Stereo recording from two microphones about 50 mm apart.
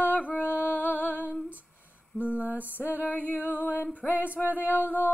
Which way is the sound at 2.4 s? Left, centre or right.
Right.